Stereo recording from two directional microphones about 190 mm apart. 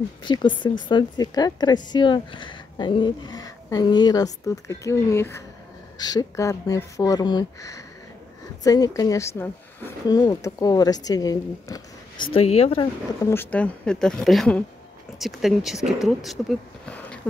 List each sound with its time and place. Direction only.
0.2 s a woman's voice: 25° left (ahead or behind)
12.3 s speech: 35° left (ahead or behind)
13.2 s speech: 10° left (ahead or behind)